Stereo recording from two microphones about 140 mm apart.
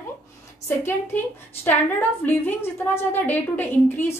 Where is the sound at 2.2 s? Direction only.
15° left (ahead or behind).